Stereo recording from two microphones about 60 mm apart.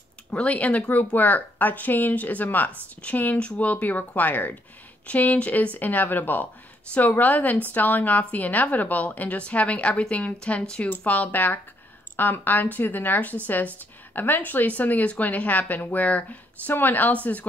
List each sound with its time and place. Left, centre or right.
0.3 s a woman's voice: left
10.9 s a woman's voice: left